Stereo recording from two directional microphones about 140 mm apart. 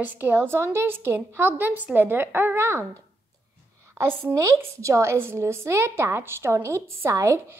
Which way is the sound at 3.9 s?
20° right (ahead or behind).